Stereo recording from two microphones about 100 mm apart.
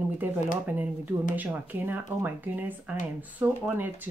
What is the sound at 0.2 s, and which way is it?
Speech, 20° right (ahead or behind).